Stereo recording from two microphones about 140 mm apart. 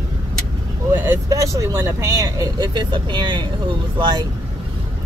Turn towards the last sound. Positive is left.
turn(degrees=-30)  # may be behind; listen again after turning